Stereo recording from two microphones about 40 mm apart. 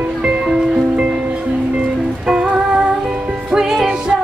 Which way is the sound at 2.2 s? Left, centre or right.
Right.